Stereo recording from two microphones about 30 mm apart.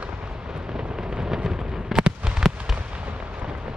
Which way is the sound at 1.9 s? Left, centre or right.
Right.